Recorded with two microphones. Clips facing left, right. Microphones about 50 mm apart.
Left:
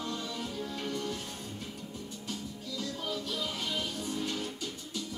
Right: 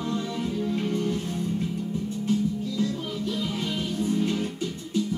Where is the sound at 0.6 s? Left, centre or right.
Right.